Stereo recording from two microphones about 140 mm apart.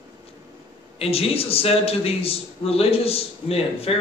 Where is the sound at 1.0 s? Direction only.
45° left (ahead or behind).